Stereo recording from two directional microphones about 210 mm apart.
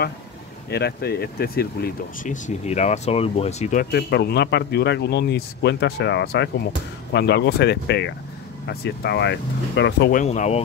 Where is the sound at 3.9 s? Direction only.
50° left (ahead or behind).